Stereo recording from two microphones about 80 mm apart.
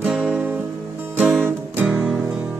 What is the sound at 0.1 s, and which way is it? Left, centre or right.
Music, centre.